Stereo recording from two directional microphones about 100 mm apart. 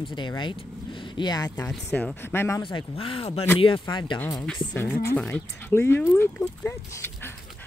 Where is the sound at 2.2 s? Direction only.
25° left (ahead or behind).